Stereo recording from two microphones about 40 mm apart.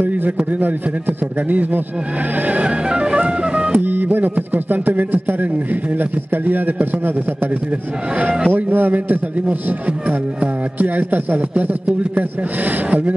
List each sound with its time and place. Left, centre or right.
1.5 s speech: right
2.4 s music: right
2.9 s music: right
3.7 s speech: right
8.2 s speech: right